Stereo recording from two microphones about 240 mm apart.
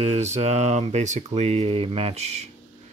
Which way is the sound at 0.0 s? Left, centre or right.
Right.